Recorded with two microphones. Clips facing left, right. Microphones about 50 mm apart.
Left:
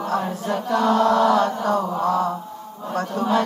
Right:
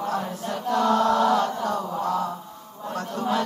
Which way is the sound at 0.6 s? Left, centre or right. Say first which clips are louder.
Left 2 dB; centre.